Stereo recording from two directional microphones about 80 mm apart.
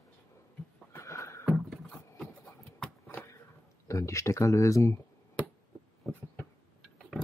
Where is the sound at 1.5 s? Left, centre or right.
Centre.